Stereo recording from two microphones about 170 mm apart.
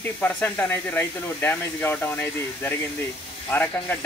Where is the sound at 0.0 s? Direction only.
10° left (ahead or behind).